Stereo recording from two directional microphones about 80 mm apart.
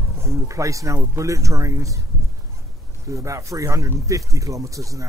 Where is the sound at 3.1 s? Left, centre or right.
Right.